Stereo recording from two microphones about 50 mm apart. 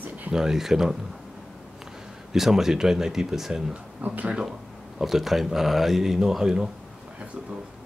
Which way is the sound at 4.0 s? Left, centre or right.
Right.